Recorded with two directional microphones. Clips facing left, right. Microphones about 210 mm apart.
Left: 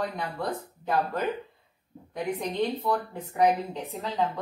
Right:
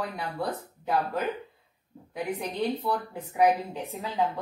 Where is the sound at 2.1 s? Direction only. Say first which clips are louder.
Left 2 dB; 5° right (ahead or behind).